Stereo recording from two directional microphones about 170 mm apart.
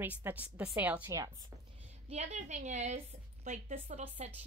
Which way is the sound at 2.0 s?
40° right (ahead or behind).